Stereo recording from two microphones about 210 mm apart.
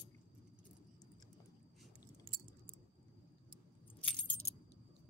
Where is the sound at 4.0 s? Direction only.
5° left (ahead or behind).